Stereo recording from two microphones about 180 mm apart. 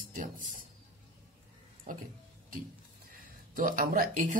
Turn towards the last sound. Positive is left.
turn(degrees=-50)  # may be behind; listen again after turning